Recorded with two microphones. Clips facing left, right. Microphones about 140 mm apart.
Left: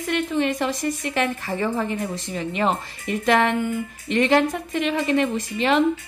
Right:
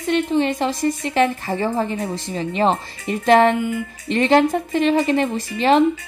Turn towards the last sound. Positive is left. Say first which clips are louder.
# right 4 dB
turn(degrees=-35)  # may be behind; listen again after turning